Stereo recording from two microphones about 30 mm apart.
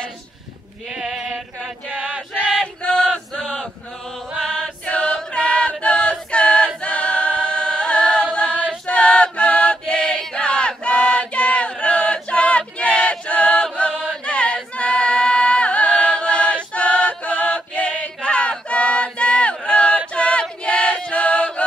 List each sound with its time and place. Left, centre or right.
0.8 s sheep: right
1.9 s choir: right
2.8 s chant: left
4.8 s a capella: left
5.9 s choir: left
6.8 s a capella: left
8.5 s choir: right
8.8 s chant: left
9.9 s chant: left
14.2 s choir: left
15.7 s chant: left
18.2 s a sound: left
20.1 s choir: left
20.6 s chant: left